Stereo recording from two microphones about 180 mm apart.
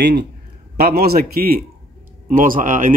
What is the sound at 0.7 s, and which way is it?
Speech, 60° right (ahead or behind).